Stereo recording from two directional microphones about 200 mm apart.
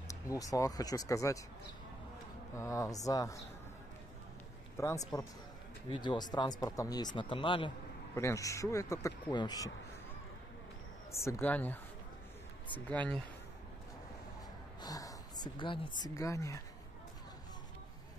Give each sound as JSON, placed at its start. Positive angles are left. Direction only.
{"t": 0.1, "sound": "speech", "side_deg": 15}
{"t": 2.5, "sound": "speech", "side_deg": 15}
{"t": 4.7, "sound": "speech", "side_deg": 15}
{"t": 8.1, "sound": "speech", "side_deg": 15}
{"t": 11.2, "sound": "speech", "side_deg": 10}
{"t": 14.8, "sound": "speech", "side_deg": 20}